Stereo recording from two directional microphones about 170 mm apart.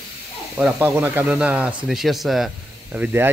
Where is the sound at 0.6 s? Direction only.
10° right (ahead or behind).